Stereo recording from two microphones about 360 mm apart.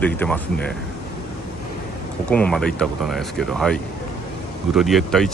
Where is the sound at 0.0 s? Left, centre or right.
Centre.